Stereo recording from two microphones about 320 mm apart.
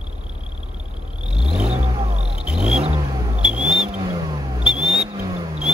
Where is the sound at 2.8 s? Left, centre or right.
Centre.